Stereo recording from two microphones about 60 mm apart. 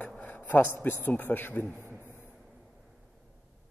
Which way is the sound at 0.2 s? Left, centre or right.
Left.